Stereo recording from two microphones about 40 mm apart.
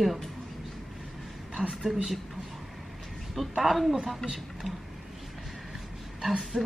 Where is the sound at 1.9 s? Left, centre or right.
Right.